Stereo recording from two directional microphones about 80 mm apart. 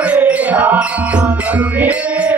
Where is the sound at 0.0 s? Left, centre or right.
Centre.